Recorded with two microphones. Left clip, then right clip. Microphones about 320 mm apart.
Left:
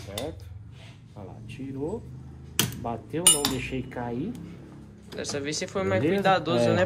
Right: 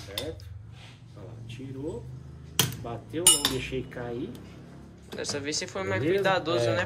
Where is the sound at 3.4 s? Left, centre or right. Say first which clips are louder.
Even; centre.